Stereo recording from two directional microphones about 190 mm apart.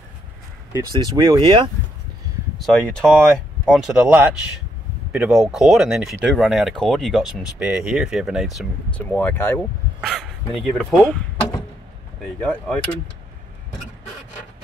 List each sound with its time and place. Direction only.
0.7 s speech: 20° right (ahead or behind)
2.6 s speech: 5° left (ahead or behind)
9.6 s speech: centre (ahead or behind)